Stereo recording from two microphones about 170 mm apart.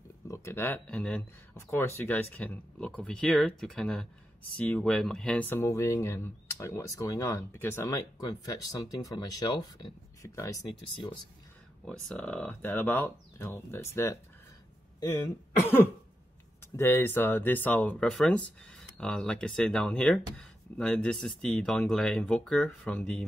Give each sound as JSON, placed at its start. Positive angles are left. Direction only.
{"t": 0.3, "sound": "speech", "side_deg": 15}
{"t": 11.8, "sound": "speech", "side_deg": 5}
{"t": 15.6, "sound": "speech", "side_deg": 10}